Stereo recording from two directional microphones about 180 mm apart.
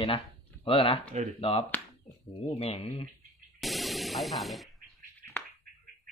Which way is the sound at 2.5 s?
35° left (ahead or behind).